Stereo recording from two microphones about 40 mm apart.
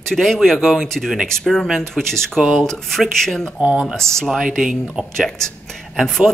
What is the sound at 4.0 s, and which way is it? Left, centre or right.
Speech, centre.